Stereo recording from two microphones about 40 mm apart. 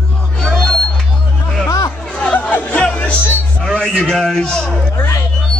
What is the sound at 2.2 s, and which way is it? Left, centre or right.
Music, left.